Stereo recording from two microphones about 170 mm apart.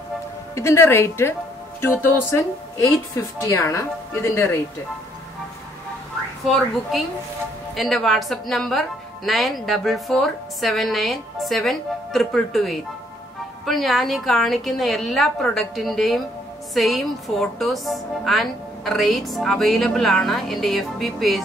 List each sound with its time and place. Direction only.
0.6 s a woman's voice: 15° left (ahead or behind)
6.4 s speech: centre (ahead or behind)